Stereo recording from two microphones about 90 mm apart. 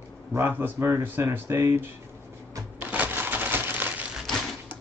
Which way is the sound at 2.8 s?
20° right (ahead or behind).